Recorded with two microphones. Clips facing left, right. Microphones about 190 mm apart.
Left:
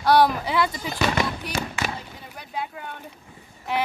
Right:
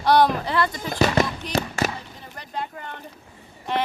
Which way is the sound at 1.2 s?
40° right (ahead or behind).